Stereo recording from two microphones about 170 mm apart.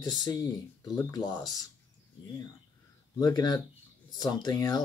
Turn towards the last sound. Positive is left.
turn(degrees=20)  # may be behind; listen again after turning